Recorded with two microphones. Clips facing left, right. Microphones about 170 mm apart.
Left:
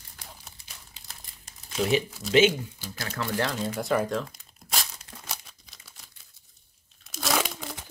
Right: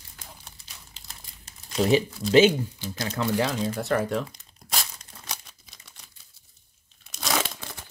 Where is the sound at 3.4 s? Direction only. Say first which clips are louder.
Even; 10° right (ahead or behind).